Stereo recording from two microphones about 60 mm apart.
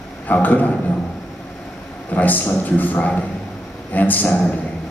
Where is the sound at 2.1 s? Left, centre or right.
Left.